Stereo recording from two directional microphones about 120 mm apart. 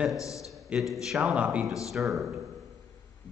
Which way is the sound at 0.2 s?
25° left (ahead or behind).